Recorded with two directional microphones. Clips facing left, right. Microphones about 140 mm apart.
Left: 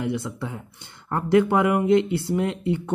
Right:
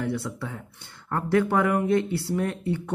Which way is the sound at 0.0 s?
20° left (ahead or behind).